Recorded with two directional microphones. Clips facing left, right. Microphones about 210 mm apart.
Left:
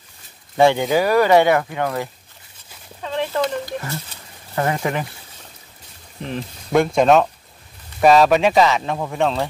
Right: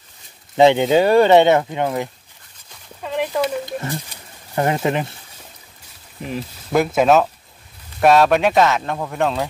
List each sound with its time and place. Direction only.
0.6 s speech: 20° right (ahead or behind)
3.0 s a sound: 10° right (ahead or behind)
3.6 s speech: 20° right (ahead or behind)
6.2 s speech: 5° right (ahead or behind)